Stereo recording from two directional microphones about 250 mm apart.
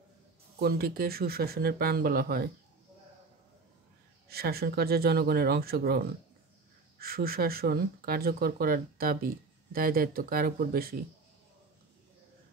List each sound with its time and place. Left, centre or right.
0.6 s speech: right
4.3 s speech: right